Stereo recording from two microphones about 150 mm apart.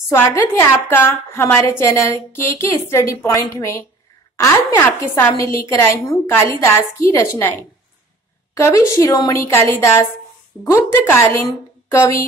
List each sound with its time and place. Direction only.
0.1 s a woman's voice: 15° left (ahead or behind)